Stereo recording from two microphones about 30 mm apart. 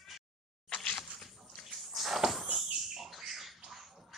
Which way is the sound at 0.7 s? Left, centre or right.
Left.